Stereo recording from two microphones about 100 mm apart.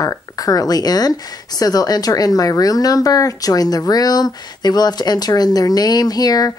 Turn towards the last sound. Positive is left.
turn(degrees=40)  # may be behind; listen again after turning